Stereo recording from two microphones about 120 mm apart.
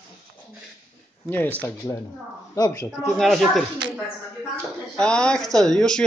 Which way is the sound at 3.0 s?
Centre (ahead or behind).